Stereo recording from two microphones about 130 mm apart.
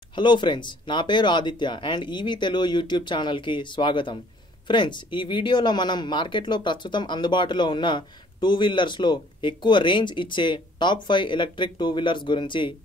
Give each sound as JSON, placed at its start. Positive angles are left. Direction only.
{"t": 0.1, "sound": "speech", "side_deg": 35}